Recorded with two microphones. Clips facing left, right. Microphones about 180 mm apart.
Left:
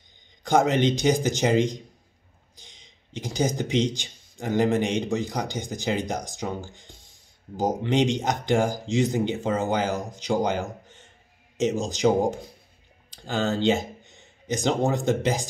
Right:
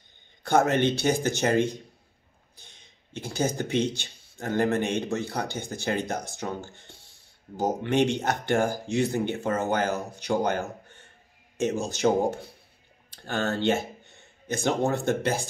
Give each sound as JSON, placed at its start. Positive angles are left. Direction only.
{"t": 0.4, "sound": "speech", "side_deg": 15}
{"t": 2.5, "sound": "a sound", "side_deg": 15}
{"t": 3.1, "sound": "speech", "side_deg": 15}